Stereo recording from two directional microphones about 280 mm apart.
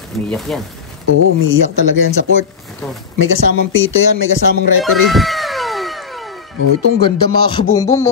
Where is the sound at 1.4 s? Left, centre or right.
Left.